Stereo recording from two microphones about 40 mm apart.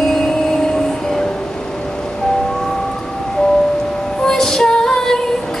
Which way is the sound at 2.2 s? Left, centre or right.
Centre.